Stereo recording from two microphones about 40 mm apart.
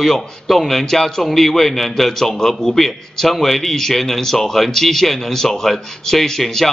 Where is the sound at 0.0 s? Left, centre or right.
Centre.